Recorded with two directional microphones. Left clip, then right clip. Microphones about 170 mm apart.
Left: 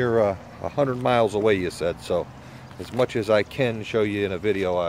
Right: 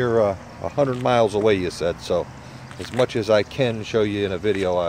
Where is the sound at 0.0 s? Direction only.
10° left (ahead or behind).